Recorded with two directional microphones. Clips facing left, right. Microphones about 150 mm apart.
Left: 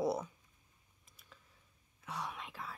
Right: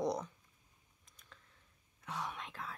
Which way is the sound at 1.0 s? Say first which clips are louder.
Even; 5° left (ahead or behind).